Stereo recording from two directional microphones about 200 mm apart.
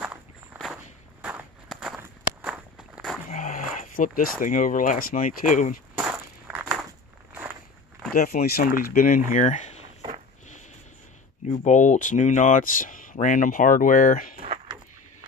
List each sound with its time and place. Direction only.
0.0 s walk: 5° right (ahead or behind)
3.3 s speech: 35° left (ahead or behind)
5.9 s walk: 5° right (ahead or behind)
8.1 s speech: 45° left (ahead or behind)
11.4 s speech: 35° left (ahead or behind)